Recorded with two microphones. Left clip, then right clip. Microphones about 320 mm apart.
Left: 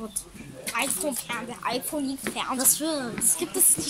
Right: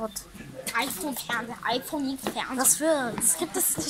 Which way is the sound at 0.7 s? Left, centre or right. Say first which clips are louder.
Left 1 dB; centre.